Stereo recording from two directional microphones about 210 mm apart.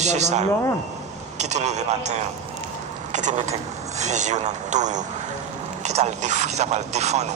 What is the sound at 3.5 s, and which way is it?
Speech, 35° right (ahead or behind).